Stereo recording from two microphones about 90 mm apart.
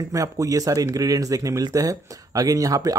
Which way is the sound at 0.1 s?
40° right (ahead or behind).